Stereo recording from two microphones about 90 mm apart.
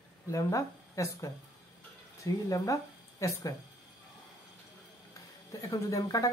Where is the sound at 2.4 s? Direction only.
35° left (ahead or behind).